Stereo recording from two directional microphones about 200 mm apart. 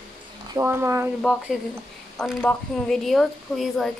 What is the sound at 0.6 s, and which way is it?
Speech, 10° right (ahead or behind).